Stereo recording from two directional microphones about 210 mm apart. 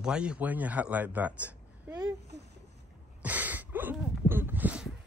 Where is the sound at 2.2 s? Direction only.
50° right (ahead or behind).